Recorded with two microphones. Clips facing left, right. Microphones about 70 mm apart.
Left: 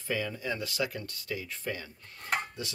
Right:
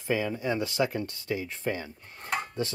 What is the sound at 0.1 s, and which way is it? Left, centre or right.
Speech, right.